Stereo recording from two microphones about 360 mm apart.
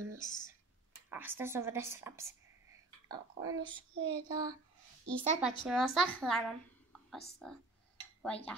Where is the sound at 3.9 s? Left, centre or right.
Right.